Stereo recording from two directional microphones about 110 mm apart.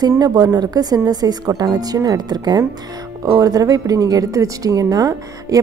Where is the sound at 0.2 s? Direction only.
35° right (ahead or behind).